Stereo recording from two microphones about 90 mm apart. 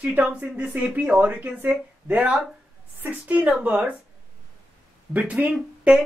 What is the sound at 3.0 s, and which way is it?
Speech, 15° right (ahead or behind).